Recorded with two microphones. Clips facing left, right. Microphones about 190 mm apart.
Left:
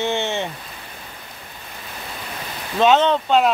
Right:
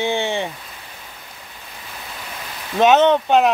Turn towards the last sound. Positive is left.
turn(degrees=-15)  # may be behind; listen again after turning